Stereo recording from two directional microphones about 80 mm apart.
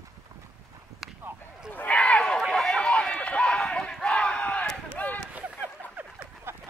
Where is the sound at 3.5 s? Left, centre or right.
Centre.